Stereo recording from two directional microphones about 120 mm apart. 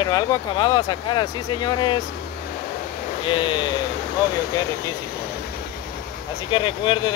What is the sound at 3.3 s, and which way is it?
Speech, 45° left (ahead or behind).